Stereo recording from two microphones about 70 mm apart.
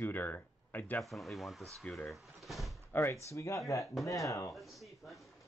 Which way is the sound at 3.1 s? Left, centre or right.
Left.